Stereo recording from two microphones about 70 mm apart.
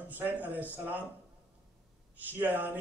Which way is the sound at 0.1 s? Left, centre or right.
Right.